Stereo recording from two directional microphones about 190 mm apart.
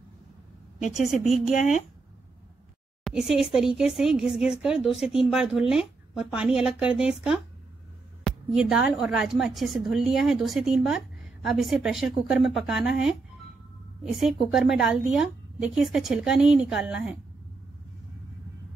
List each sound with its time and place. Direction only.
0.7 s a woman's voice: 40° left (ahead or behind)
3.0 s a sound: centre (ahead or behind)
3.5 s a woman's voice: 5° right (ahead or behind)